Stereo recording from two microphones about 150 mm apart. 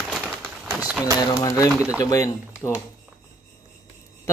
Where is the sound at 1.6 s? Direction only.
5° right (ahead or behind).